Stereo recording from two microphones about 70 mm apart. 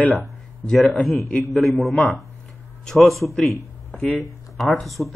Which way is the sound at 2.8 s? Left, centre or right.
Centre.